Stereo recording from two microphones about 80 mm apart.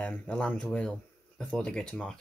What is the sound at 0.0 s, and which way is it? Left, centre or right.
Speech, centre.